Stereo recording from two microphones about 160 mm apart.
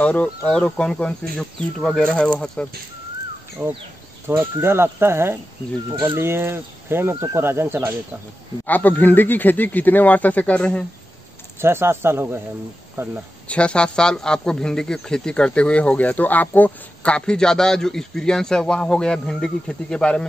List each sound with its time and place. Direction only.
0.0 s speech: 10° left (ahead or behind)
3.6 s speech: 15° right (ahead or behind)
8.6 s speech: 10° left (ahead or behind)
11.6 s speech: 15° right (ahead or behind)
13.5 s speech: 5° left (ahead or behind)